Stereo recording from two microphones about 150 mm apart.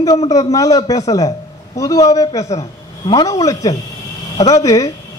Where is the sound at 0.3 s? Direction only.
20° left (ahead or behind).